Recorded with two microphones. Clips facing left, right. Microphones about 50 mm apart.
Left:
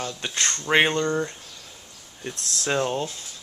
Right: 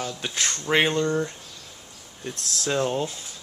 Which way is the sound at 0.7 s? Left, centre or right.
Centre.